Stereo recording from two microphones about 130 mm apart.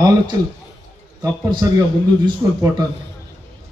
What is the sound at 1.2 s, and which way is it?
A man's voice, 30° right (ahead or behind).